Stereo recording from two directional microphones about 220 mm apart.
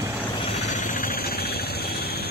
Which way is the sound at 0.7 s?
35° left (ahead or behind).